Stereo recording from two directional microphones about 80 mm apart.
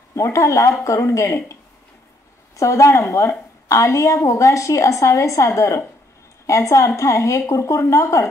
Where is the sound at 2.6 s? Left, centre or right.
Left.